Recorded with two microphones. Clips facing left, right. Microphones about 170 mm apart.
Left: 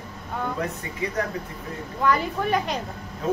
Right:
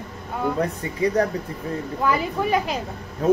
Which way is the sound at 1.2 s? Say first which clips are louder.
Right 5 dB; 35° right (ahead or behind).